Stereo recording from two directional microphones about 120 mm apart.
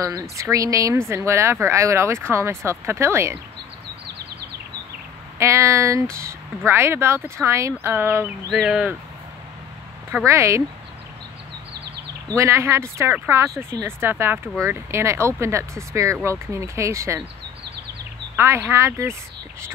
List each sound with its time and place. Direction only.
0.0 s speech: 25° right (ahead or behind)
5.4 s speech: 25° right (ahead or behind)
8.5 s speech: 5° right (ahead or behind)
10.2 s speech: 25° right (ahead or behind)
12.4 s speech: 25° right (ahead or behind)
18.3 s speech: 20° right (ahead or behind)